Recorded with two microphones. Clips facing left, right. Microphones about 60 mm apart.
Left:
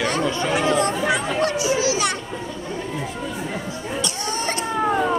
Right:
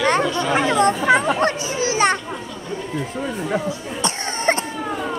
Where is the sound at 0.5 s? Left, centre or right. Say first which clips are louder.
Right 3 dB; right.